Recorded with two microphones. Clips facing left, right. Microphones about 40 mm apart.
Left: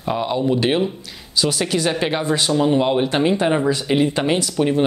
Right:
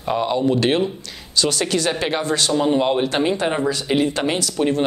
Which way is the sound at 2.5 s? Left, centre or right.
Centre.